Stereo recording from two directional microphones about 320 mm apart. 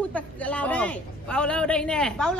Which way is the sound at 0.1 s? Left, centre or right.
Centre.